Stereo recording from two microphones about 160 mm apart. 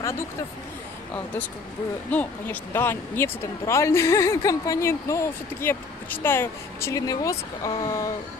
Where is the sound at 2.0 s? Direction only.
10° left (ahead or behind).